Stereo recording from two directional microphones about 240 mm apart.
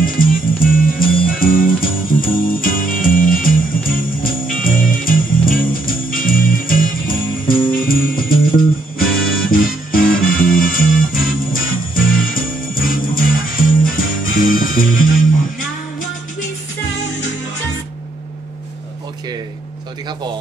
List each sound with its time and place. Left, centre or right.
0.0 s music: left
9.5 s music: left